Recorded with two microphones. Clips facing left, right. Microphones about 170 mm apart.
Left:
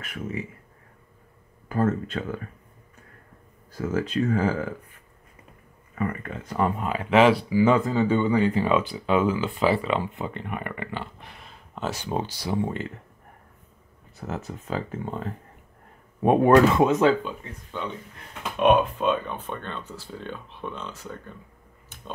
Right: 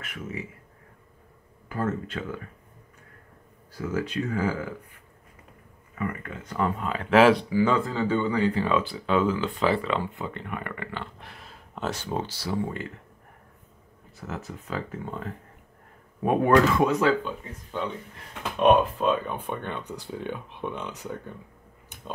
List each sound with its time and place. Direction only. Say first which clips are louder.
1.7 s speech: left 5 dB; 45° left (ahead or behind)
3.7 s speech: left 3 dB; 45° left (ahead or behind)
6.0 s speech: left 3 dB; 35° left (ahead or behind)
6.5 s speech: left 2 dB; 20° left (ahead or behind)
6.9 s speech: right 1 dB; 10° left (ahead or behind)
11.1 s a sound: even; centre (ahead or behind)
11.9 s speech: left 2 dB; 15° left (ahead or behind)
14.2 s speech: left 3 dB; 25° left (ahead or behind)
17.6 s speech: right 2 dB; 5° right (ahead or behind)